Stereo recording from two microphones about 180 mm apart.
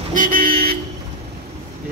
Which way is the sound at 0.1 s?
50° right (ahead or behind).